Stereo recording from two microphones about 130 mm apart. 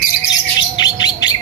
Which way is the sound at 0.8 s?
30° left (ahead or behind).